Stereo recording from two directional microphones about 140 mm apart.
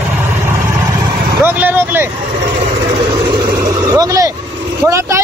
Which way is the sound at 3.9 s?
25° right (ahead or behind).